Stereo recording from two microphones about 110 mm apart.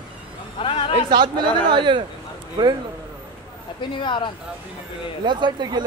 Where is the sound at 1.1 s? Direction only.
45° right (ahead or behind).